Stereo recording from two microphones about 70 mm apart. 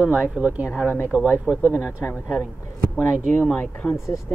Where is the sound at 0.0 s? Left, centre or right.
Centre.